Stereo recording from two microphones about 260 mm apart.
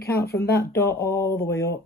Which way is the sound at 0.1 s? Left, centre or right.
Left.